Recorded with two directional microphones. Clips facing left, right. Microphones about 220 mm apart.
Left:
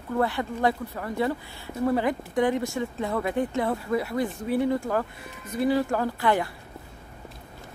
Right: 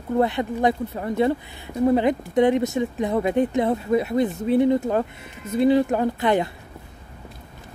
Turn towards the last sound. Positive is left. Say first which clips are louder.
# right 4 dB
turn(degrees=-20)  # may be behind; listen again after turning